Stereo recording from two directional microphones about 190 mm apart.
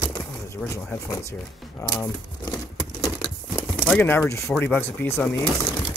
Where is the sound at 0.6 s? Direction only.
10° left (ahead or behind).